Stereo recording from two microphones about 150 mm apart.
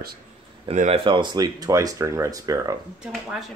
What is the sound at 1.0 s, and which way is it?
Speech, 35° right (ahead or behind).